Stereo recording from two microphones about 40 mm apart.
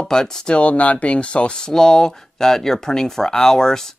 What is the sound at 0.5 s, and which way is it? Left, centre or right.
Speech, left.